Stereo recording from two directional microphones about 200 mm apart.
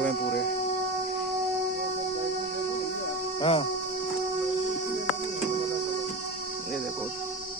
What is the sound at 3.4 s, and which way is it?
Speech, 25° left (ahead or behind).